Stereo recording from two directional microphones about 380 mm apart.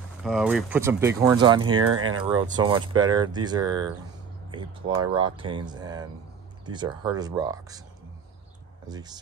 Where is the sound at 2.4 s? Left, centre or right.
Centre.